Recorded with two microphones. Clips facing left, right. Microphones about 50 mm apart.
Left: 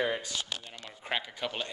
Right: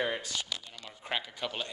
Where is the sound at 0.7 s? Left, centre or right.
Centre.